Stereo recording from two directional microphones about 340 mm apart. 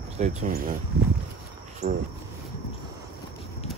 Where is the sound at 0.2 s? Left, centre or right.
Centre.